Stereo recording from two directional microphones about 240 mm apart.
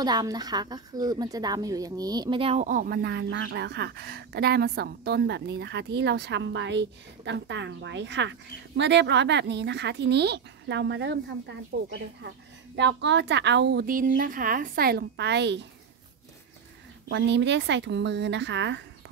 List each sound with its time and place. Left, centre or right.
0.0 s a woman's voice: centre; by 15.6 s right
17.1 s a woman's voice: right